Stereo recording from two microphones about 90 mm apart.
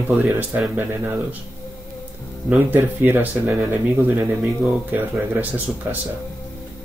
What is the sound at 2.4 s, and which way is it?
Speech, 20° right (ahead or behind).